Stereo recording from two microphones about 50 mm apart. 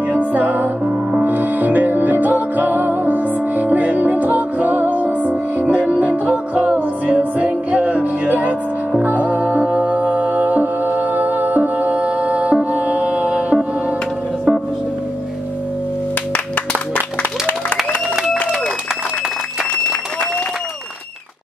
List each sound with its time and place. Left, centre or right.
0.1 s music: right
17.2 s applause: left